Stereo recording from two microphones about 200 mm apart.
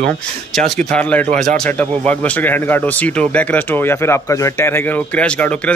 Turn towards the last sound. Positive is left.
turn(degrees=5)  # may be behind; listen again after turning